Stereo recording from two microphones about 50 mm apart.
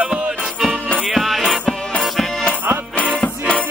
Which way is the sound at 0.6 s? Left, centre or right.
Centre.